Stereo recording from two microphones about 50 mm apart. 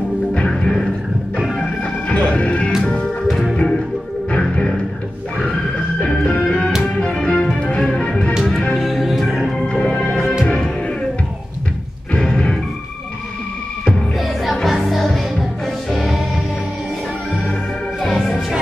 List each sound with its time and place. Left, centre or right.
0.5 s music: centre
1.8 s music: left
3.3 s music: centre
4.3 s music: centre
5.9 s music: centre
8.7 s music: centre
9.7 s music: centre
12.2 s music: centre
14.1 s music: centre
18.0 s music: centre